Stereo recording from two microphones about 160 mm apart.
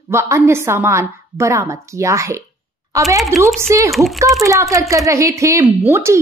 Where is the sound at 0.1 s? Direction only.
15° right (ahead or behind).